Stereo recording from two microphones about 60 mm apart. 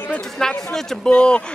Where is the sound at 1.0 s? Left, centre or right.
Centre.